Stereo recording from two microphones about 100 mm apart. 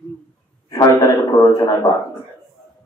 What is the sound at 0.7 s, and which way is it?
A man's voice, 40° left (ahead or behind).